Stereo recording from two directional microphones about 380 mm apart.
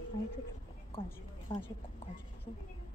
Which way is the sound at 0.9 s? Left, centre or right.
Centre.